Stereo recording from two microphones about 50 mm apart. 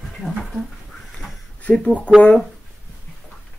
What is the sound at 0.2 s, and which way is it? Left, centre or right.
Dog, left.